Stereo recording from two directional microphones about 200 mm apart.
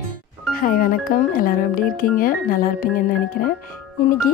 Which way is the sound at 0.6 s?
45° left (ahead or behind).